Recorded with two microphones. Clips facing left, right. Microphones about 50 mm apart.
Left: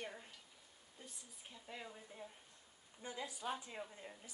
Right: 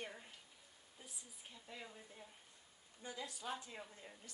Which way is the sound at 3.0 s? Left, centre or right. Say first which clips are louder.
Left 2 dB; left.